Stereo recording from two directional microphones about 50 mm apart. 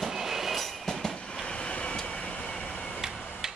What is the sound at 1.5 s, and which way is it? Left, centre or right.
Vehicle, left.